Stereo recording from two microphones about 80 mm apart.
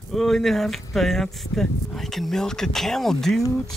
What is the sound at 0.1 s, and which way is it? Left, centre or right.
Speech, centre.